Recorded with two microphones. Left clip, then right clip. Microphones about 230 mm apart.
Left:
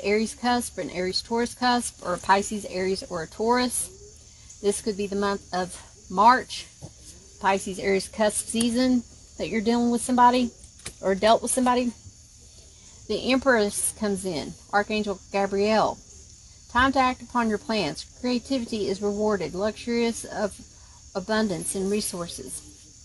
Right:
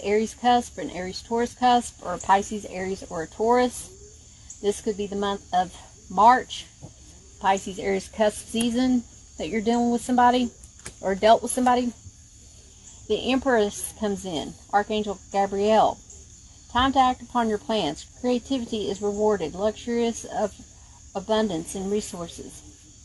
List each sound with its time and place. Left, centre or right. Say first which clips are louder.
0.0 s speech: right 2 dB; left
13.0 s speech: left 1 dB; left